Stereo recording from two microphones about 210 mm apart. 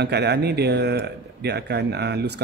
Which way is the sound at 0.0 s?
50° right (ahead or behind).